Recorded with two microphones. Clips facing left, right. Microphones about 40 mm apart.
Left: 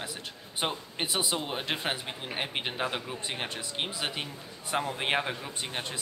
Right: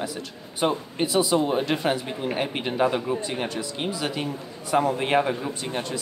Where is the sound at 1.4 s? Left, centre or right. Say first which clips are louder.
Right 10 dB; centre.